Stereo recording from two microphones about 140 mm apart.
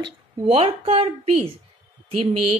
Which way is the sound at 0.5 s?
45° right (ahead or behind).